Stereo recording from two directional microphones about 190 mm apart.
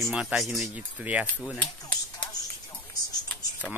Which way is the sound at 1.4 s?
5° left (ahead or behind).